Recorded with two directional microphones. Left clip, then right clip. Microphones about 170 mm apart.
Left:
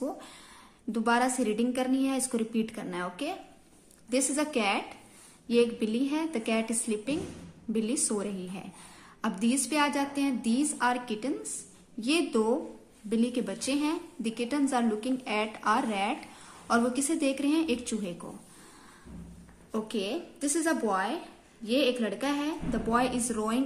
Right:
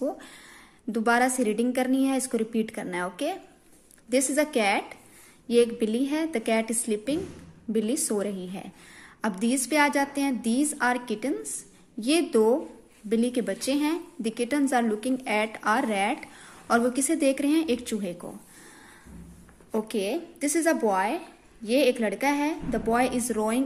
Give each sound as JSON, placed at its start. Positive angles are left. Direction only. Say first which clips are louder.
{"t": 0.0, "sound": "a sound", "louder": "right 5 dB", "side_deg": -20}
{"t": 0.9, "sound": "a woman's voice", "louder": "right 4 dB", "side_deg": -25}
{"t": 19.7, "sound": "a woman's voice", "louder": "right 5 dB", "side_deg": -30}